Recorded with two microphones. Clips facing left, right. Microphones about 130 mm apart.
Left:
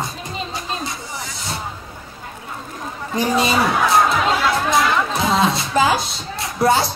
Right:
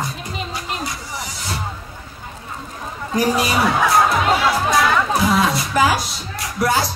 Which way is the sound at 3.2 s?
25° left (ahead or behind).